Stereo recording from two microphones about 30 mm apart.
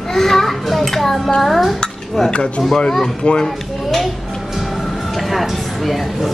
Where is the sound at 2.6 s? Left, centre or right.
Centre.